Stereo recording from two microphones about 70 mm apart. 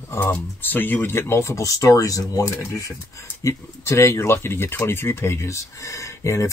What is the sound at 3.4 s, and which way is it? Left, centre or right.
Speech, left.